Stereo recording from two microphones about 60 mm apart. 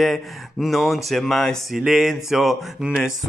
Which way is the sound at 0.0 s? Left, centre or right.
Centre.